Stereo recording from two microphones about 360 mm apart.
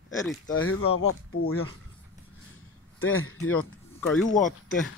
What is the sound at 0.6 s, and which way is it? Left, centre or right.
Speech, left.